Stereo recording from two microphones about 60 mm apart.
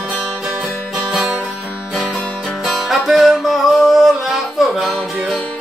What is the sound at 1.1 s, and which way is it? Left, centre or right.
Music, centre.